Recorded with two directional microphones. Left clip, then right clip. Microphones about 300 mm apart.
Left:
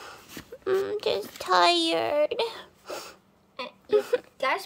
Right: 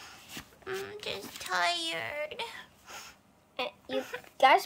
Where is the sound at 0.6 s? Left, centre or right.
Centre.